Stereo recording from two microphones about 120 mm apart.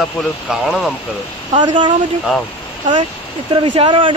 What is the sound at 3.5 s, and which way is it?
Speech, 45° right (ahead or behind).